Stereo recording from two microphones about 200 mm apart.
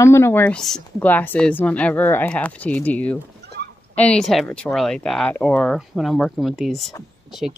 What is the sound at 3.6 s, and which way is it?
Fowl, 55° right (ahead or behind).